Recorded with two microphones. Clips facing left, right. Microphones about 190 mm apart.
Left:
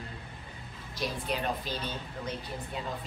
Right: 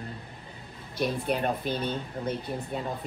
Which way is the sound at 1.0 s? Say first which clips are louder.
Right 6 dB; 55° right (ahead or behind).